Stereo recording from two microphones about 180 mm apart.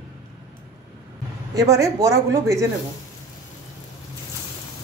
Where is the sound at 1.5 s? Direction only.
20° right (ahead or behind).